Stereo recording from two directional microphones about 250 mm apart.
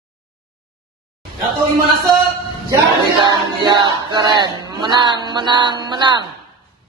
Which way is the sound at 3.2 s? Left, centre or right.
Centre.